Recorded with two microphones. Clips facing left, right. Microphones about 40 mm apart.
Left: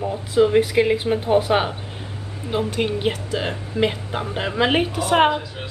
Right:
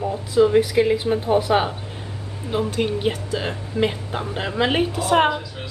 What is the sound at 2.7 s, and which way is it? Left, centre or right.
Speech, left.